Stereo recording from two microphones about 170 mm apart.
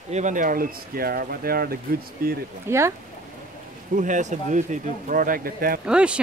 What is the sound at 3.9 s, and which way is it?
Speech, 50° right (ahead or behind).